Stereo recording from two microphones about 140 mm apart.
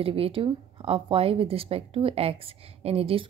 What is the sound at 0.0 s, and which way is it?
Speech, 40° right (ahead or behind).